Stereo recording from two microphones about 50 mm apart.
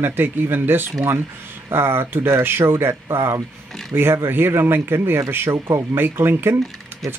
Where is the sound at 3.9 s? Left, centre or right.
Right.